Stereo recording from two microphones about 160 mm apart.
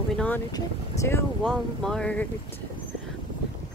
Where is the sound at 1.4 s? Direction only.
5° left (ahead or behind).